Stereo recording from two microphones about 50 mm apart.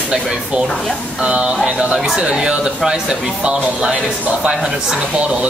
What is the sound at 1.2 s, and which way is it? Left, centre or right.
Speech, right.